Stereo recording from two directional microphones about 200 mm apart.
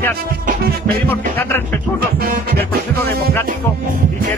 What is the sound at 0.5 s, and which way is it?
Music, 50° right (ahead or behind).